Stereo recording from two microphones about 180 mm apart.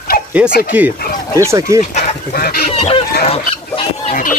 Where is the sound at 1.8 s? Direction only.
40° left (ahead or behind).